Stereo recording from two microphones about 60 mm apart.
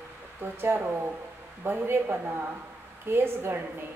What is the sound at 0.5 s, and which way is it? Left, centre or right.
A woman's voice, right.